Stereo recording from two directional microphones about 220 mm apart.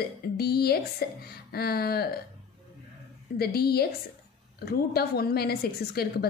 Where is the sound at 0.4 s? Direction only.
45° left (ahead or behind).